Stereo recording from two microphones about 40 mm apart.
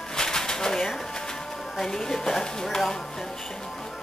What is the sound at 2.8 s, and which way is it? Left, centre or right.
Music, centre.